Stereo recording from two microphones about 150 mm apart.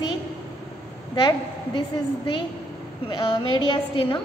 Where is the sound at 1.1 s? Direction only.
35° left (ahead or behind).